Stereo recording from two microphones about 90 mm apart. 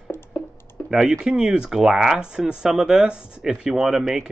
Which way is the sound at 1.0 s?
10° right (ahead or behind).